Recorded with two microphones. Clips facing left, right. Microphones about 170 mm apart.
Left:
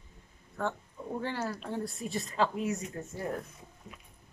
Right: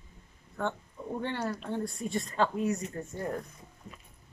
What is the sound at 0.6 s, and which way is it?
Speech, centre (ahead or behind).